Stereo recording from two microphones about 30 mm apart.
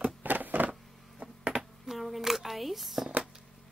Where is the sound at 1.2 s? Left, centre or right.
Right.